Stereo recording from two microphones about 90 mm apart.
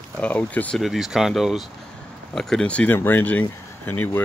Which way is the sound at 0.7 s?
5° right (ahead or behind).